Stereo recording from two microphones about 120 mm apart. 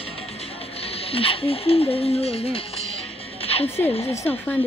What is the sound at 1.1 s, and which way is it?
Speech, 50° left (ahead or behind).